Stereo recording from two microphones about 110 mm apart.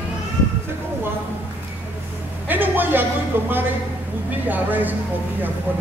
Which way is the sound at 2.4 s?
15° right (ahead or behind).